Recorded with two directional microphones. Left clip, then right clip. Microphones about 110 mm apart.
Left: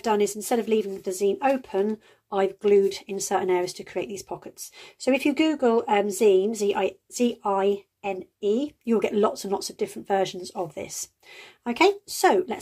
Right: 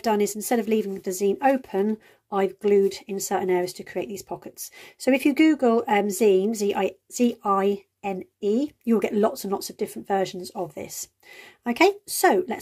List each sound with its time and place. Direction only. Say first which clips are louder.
0.0 s speech: even; 45° right (ahead or behind)
2.2 s speech: even; 40° right (ahead or behind)
11.6 s speech: right 1 dB; 45° right (ahead or behind)